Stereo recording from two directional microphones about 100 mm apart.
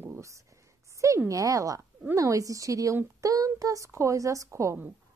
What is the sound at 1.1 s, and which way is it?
A woman's voice, 30° right (ahead or behind).